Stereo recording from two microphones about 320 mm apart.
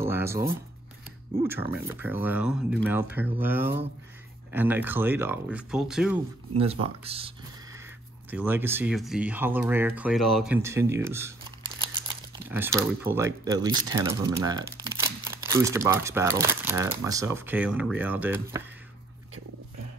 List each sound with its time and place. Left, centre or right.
0.0 s a sound: centre
1.4 s speech: centre
6.5 s speech: centre
8.3 s speech: centre
12.4 s speech: centre